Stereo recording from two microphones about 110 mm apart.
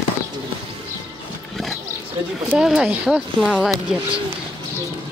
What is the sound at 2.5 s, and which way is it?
Speech, 5° right (ahead or behind).